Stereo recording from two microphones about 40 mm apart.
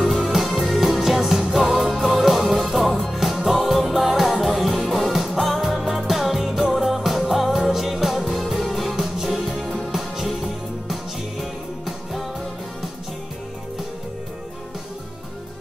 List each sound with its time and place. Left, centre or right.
0.1 s music: centre